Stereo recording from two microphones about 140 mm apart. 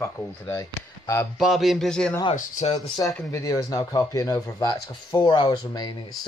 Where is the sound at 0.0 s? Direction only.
20° left (ahead or behind).